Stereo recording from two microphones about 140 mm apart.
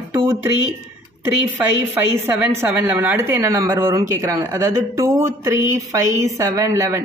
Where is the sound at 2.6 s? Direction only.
10° right (ahead or behind).